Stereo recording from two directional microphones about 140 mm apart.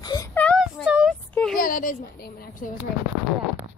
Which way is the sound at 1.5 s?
80° left.